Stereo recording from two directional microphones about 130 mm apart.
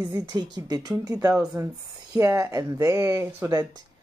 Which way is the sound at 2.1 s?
25° right (ahead or behind).